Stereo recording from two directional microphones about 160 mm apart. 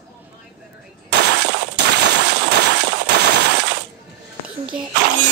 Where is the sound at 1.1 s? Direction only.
90° right.